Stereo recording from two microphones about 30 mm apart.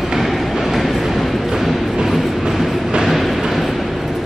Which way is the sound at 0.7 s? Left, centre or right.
Centre.